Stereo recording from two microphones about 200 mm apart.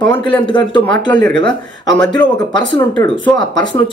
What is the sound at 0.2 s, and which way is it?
Speech, 25° left (ahead or behind).